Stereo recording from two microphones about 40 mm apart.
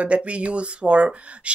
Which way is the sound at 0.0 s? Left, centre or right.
Right.